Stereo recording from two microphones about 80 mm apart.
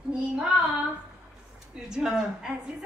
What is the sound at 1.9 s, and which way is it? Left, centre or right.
Speech, centre.